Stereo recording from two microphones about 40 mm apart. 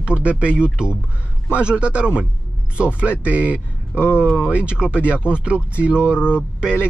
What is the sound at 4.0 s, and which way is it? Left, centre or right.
Speech, left.